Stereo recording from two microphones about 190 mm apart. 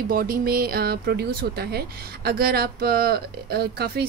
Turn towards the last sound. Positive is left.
turn(degrees=-55)  # may be behind; listen again after turning